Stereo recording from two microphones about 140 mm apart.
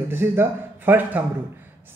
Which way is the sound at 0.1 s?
15° right (ahead or behind).